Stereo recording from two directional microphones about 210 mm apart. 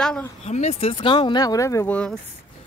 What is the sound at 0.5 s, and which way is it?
Speech, 30° left (ahead or behind).